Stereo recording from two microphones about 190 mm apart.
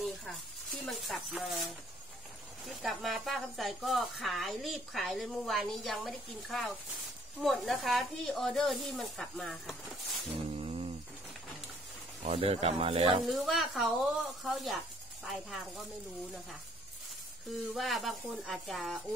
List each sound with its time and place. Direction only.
0.0 s speech: centre (ahead or behind)
10.5 s a sound: 30° right (ahead or behind)
12.2 s speech: 35° right (ahead or behind)
13.3 s speech: centre (ahead or behind)
17.5 s speech: centre (ahead or behind)